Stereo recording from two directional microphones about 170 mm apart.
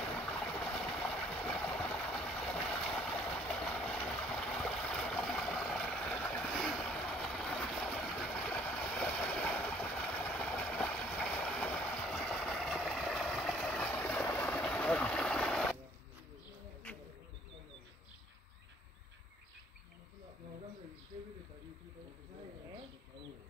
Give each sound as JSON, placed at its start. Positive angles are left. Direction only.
{"t": 0.1, "sound": "boat", "side_deg": 5}